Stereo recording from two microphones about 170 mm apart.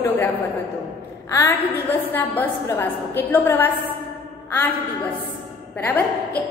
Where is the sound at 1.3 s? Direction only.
15° left (ahead or behind).